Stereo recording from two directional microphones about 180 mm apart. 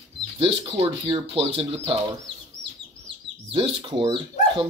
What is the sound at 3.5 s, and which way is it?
Speech, 30° right (ahead or behind).